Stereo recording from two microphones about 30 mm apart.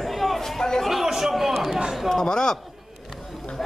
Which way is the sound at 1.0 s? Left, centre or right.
Centre.